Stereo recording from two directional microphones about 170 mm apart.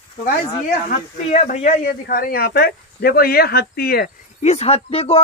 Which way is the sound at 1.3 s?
45° left (ahead or behind).